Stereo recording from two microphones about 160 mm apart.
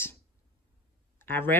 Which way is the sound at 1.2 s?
15° left (ahead or behind).